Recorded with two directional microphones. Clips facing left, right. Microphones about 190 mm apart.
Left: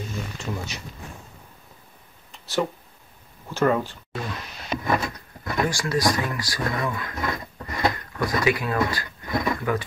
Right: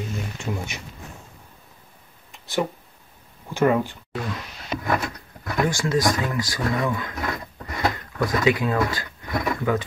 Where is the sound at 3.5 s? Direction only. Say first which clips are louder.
Right 2 dB; 15° right (ahead or behind).